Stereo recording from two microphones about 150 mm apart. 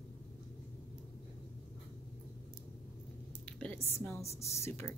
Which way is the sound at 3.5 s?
5° left (ahead or behind).